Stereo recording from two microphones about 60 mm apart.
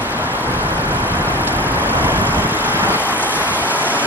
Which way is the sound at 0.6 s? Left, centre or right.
Right.